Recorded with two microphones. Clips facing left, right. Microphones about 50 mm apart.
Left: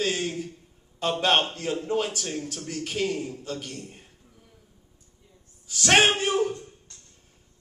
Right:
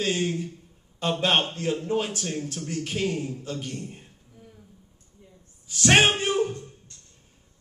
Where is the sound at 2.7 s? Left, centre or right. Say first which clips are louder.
Even; centre.